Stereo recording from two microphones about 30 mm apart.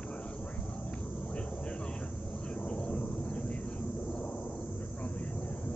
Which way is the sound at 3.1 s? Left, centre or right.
Left.